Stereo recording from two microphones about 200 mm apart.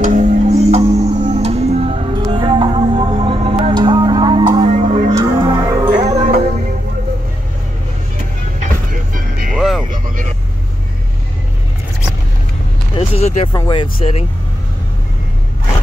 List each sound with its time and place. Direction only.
0.0 s music: 40° right (ahead or behind)
5.1 s music: 20° right (ahead or behind)
5.9 s music: 35° right (ahead or behind)
8.5 s vehicle: 45° right (ahead or behind)
9.5 s music: centre (ahead or behind)
9.8 s vehicle: 45° right (ahead or behind)
12.9 s vehicle: 30° left (ahead or behind)
13.5 s speech: 20° left (ahead or behind)